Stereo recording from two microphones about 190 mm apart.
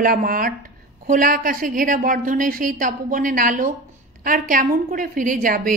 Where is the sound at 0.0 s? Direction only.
50° right (ahead or behind).